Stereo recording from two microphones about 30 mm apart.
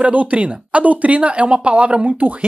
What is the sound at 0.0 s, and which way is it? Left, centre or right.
Speech, right.